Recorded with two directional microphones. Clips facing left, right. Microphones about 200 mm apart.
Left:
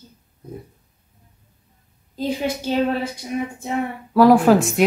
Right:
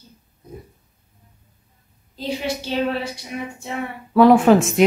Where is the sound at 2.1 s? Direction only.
45° left (ahead or behind).